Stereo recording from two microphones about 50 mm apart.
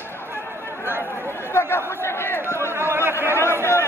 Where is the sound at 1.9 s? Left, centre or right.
Left.